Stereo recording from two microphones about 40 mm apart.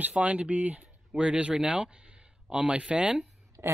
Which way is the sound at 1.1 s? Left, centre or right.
Right.